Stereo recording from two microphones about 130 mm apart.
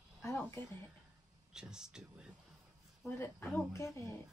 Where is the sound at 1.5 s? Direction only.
5° right (ahead or behind).